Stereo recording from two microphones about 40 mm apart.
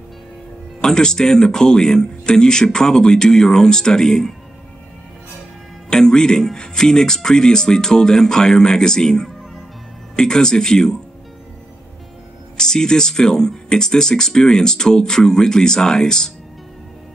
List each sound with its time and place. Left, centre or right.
0.7 s speech: centre
5.9 s speech: centre
12.5 s speech: centre